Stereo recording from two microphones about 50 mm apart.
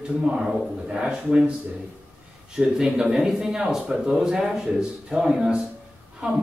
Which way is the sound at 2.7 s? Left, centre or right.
Centre.